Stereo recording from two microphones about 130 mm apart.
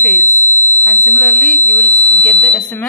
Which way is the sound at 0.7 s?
15° left (ahead or behind).